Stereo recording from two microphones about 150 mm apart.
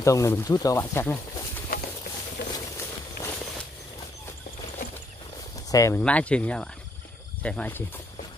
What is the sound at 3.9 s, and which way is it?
Horse, 20° left (ahead or behind).